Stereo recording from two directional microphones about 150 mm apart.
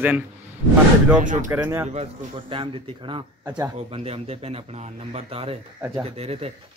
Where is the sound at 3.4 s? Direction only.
20° right (ahead or behind).